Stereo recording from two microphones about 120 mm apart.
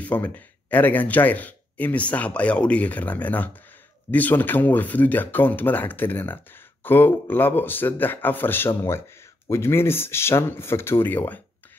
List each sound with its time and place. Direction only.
0.0 s speech: 15° left (ahead or behind)